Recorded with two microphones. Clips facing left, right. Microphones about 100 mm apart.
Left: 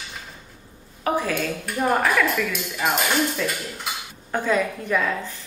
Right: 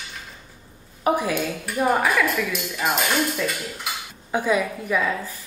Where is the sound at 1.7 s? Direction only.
Centre (ahead or behind).